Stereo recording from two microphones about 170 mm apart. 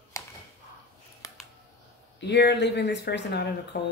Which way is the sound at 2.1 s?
90° left.